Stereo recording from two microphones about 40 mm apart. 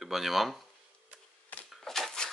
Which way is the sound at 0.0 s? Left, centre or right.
Centre.